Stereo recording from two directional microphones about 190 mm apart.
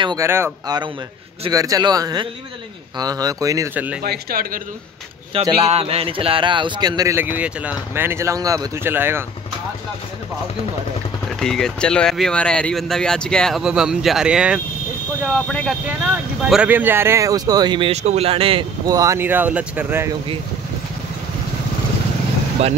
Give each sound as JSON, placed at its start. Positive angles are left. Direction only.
{"t": 0.0, "sound": "a man's voice", "side_deg": -20}
{"t": 4.0, "sound": "speech", "side_deg": -55}
{"t": 5.3, "sound": "a man's voice", "side_deg": -30}
{"t": 11.3, "sound": "speech", "side_deg": 5}
{"t": 15.2, "sound": "speech", "side_deg": 5}
{"t": 16.4, "sound": "speech", "side_deg": -5}
{"t": 22.6, "sound": "speech", "side_deg": -35}